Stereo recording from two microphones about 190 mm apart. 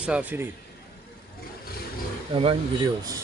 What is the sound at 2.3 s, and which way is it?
Speech, 30° right (ahead or behind).